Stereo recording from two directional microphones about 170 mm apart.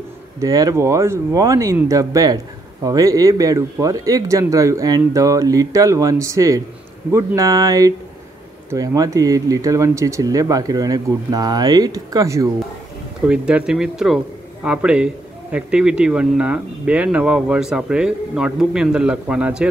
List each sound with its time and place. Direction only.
0.4 s speech: 20° right (ahead or behind)
13.3 s speech: 5° right (ahead or behind)